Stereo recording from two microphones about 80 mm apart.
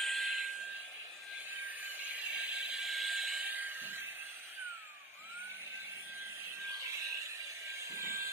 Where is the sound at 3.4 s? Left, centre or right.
Right.